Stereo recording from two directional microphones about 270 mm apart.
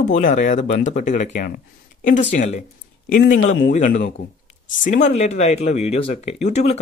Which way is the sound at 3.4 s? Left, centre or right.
Left.